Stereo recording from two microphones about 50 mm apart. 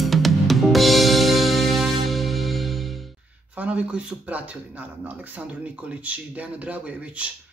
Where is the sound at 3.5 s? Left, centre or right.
Right.